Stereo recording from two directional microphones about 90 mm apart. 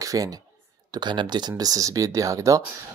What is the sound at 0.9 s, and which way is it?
Speech, 55° right (ahead or behind).